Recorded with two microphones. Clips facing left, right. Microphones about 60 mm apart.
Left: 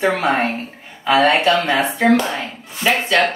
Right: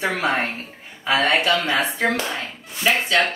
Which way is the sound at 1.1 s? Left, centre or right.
Centre.